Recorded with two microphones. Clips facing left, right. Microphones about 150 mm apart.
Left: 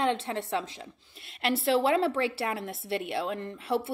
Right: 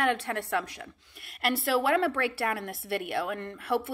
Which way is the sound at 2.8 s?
55° right (ahead or behind).